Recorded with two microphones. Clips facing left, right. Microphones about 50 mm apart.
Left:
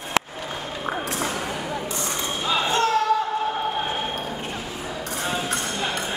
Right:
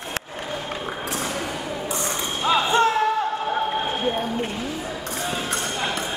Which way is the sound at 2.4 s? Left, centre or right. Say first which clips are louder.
Right 4 dB; centre.